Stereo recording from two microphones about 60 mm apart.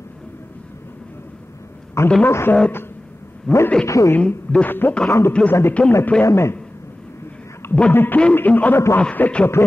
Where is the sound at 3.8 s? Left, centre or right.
Left.